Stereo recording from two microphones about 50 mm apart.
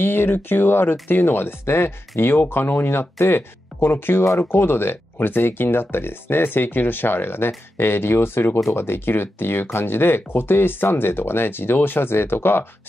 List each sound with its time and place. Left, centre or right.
0.0 s speech: left